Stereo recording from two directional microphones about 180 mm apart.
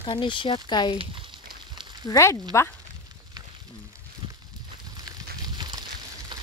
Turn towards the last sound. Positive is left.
turn(degrees=-25)  # may be behind; listen again after turning